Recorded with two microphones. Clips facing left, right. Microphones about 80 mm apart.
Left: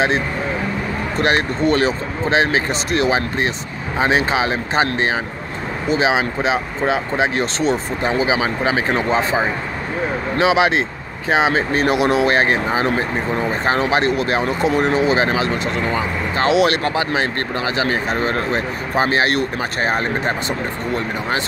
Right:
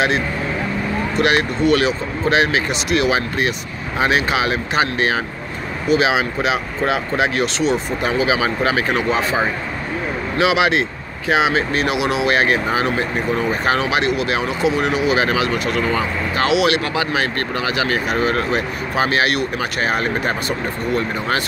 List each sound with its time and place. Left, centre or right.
1.1 s speech: left
16.4 s speech: left